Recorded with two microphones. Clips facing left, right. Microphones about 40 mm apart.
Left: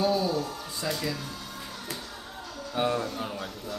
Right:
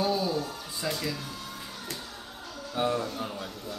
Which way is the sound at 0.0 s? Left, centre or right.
Centre.